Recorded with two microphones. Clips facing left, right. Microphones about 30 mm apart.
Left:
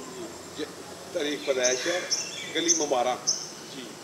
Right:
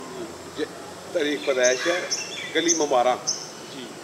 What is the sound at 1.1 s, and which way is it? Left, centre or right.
A man's voice, centre.